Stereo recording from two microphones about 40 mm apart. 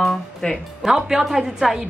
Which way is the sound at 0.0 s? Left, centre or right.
Centre.